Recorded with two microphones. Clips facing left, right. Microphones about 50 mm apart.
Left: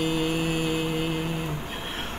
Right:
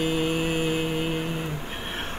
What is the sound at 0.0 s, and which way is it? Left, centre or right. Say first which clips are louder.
Mantra: right 1 dB; centre.